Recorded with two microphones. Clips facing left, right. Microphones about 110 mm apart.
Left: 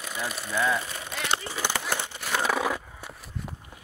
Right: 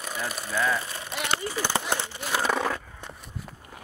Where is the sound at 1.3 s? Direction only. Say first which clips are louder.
Right 1 dB; 15° left (ahead or behind).